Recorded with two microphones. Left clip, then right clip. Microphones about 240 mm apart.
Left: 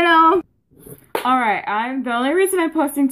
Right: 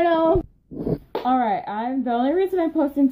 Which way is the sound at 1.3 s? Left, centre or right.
Centre.